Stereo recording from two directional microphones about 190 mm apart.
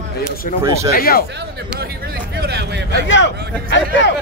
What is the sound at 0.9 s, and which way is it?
Speech, 50° left (ahead or behind).